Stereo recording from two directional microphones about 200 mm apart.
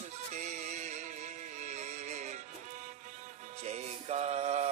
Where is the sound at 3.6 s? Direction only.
35° right (ahead or behind).